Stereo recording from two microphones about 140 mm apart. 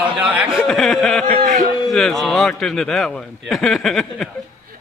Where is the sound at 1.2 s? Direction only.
80° right.